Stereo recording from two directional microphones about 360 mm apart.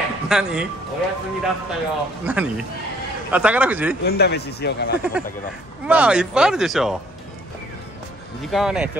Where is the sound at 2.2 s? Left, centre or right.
Centre.